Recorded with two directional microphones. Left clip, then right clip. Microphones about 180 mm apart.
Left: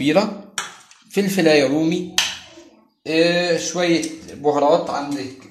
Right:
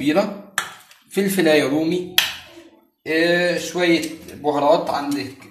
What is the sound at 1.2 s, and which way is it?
Speech, 30° left (ahead or behind).